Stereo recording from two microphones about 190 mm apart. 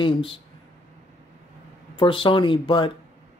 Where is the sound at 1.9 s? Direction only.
25° left (ahead or behind).